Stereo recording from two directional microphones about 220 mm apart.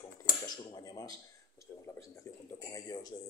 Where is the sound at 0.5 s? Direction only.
15° left (ahead or behind).